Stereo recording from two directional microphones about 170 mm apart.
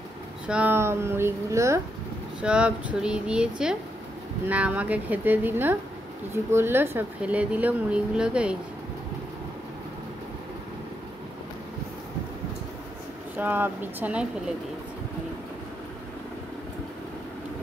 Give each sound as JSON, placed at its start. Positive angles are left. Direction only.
{"t": 0.5, "sound": "speech", "side_deg": -10}
{"t": 2.4, "sound": "speech", "side_deg": -5}
{"t": 13.4, "sound": "speech", "side_deg": -10}